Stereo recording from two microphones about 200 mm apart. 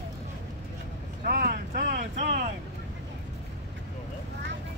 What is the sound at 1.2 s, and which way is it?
Speech, 45° right (ahead or behind).